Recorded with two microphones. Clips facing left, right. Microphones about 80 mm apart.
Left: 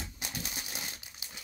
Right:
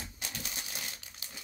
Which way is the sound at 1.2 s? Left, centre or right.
Centre.